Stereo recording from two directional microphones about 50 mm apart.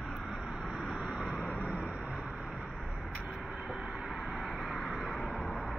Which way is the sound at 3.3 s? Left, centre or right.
Centre.